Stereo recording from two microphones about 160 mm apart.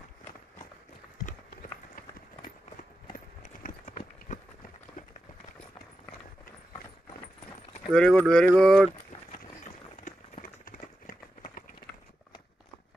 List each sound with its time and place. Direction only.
3.6 s run: 60° left (ahead or behind)
7.9 s speech: 5° left (ahead or behind)
10.0 s run: 55° left (ahead or behind)